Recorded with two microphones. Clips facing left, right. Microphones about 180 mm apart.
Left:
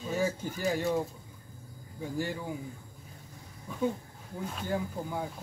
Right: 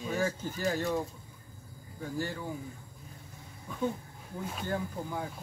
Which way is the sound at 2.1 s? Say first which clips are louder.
Left 1 dB; 15° left (ahead or behind).